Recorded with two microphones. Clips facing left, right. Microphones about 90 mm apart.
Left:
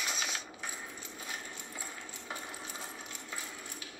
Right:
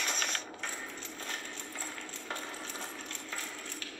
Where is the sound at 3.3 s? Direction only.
15° left (ahead or behind).